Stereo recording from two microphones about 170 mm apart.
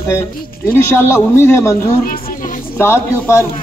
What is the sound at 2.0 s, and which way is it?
Music, 55° left (ahead or behind).